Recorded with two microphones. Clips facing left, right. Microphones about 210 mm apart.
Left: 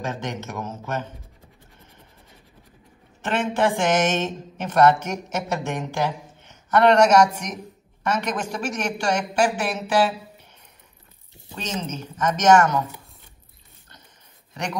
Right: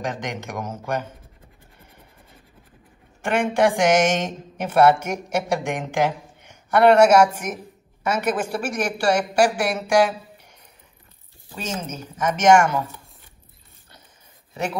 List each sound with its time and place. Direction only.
0.0 s speech: 15° right (ahead or behind)
3.2 s speech: 10° right (ahead or behind)
11.5 s speech: 10° right (ahead or behind)